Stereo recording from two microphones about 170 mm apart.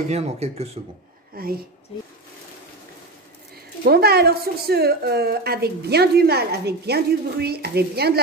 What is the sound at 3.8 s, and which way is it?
A woman's voice, 65° right (ahead or behind).